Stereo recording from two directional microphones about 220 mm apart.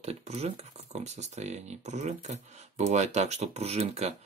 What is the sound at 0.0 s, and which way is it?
Speech, 30° right (ahead or behind).